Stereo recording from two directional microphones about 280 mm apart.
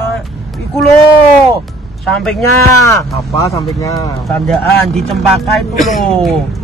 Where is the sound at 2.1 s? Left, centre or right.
Centre.